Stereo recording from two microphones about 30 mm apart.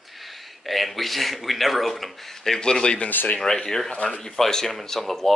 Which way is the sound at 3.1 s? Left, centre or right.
Left.